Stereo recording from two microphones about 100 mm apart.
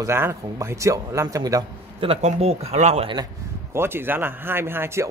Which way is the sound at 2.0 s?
80° right.